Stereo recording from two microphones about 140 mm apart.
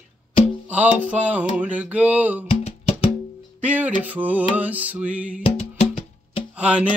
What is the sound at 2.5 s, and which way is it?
Music, 45° left (ahead or behind).